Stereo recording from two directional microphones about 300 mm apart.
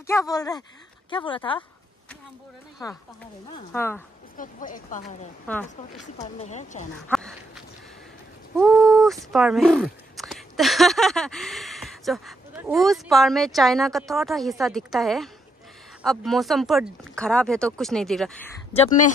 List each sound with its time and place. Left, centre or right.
0.0 s speech: centre
3.5 s speech: centre
4.4 s speech: left
5.5 s speech: centre; by 6.8 s left
7.1 s speech: centre
8.5 s a sound: centre
8.8 s speech: centre
18.8 s speech: left